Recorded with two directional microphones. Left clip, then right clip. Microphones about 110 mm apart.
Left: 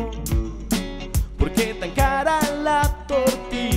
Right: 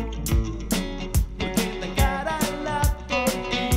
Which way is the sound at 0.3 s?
Centre (ahead or behind).